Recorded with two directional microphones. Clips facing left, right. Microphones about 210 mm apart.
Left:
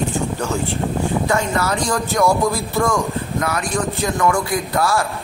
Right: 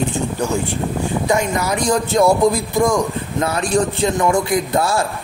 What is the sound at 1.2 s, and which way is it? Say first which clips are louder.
Speech: right 1 dB; 15° right (ahead or behind).